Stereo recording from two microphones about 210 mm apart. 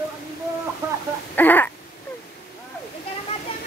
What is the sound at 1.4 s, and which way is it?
Speech, 10° left (ahead or behind).